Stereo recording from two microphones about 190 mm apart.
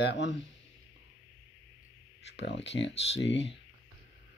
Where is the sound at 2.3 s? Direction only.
70° left (ahead or behind).